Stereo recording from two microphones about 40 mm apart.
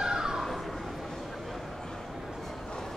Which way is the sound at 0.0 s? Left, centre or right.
Centre.